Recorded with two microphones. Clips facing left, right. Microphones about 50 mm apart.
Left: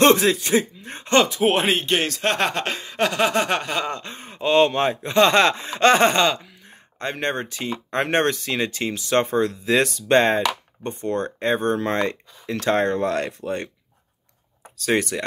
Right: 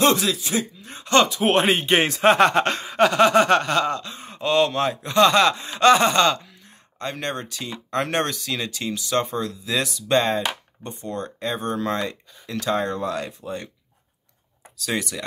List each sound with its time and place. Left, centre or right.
0.1 s speech: left
1.4 s speech: centre
1.9 s a man's voice: right
2.2 s speech: centre
3.9 s speech: left
6.1 s speech: centre
6.6 s speech: left
14.8 s speech: left